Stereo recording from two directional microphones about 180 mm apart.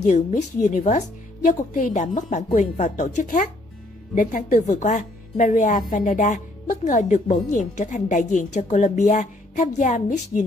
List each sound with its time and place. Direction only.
0.0 s a woman's voice: 45° left (ahead or behind)